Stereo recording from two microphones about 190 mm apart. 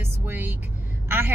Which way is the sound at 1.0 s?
10° right (ahead or behind).